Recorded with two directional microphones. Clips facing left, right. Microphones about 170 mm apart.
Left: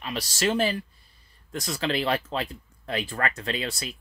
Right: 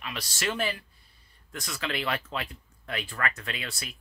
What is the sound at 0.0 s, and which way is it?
Speech, 35° left (ahead or behind).